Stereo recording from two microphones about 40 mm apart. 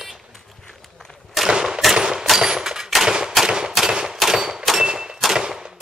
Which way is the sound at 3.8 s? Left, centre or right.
Centre.